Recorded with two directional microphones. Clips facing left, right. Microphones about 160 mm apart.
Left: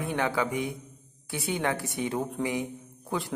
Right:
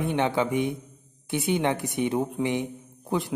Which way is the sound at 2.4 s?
25° right (ahead or behind).